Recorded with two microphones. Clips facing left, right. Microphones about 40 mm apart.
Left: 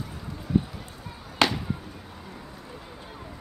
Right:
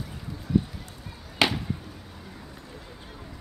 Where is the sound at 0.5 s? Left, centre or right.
Centre.